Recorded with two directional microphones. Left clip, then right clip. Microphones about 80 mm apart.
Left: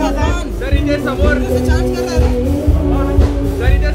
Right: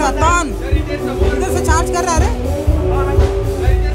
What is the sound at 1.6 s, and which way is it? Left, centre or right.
Music, right.